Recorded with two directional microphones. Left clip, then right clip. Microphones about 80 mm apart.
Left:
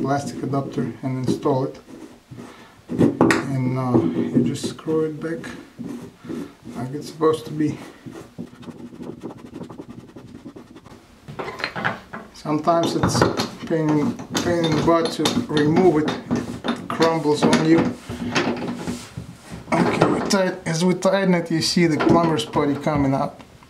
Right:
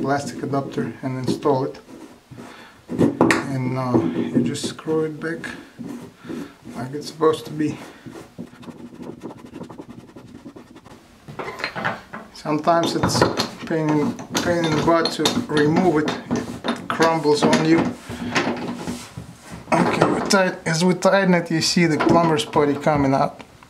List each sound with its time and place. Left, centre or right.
0.0 s speech: centre
2.9 s speech: centre
9.0 s vehicle: centre
11.3 s a sound: centre
17.0 s drawer open or close: centre
19.5 s speech: centre